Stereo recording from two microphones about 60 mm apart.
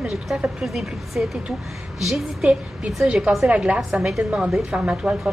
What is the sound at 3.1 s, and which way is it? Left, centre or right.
Speech, centre.